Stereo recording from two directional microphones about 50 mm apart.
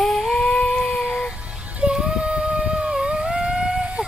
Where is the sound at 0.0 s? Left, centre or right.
Centre.